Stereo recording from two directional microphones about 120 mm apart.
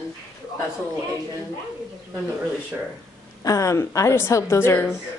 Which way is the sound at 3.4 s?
25° left (ahead or behind).